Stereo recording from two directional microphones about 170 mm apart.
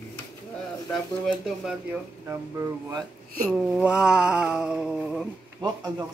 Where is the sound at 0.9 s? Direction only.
5° left (ahead or behind).